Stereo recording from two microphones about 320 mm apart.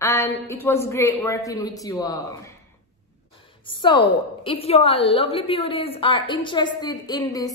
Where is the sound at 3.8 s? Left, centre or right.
Centre.